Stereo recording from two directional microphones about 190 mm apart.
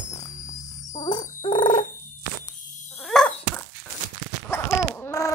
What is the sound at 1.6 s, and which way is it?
Fowl, 25° left (ahead or behind).